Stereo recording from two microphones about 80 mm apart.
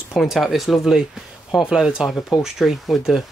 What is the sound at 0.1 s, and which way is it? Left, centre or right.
Speech, centre.